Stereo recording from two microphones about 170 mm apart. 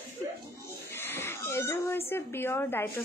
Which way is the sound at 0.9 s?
15° left (ahead or behind).